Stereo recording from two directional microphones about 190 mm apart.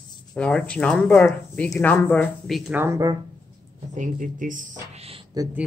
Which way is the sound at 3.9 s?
45° right (ahead or behind).